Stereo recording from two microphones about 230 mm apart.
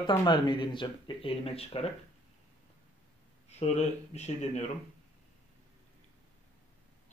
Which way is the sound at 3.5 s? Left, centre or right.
Left.